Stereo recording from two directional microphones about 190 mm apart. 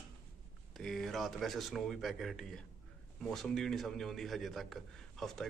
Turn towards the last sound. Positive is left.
turn(degrees=0)  # may be behind; listen again after turning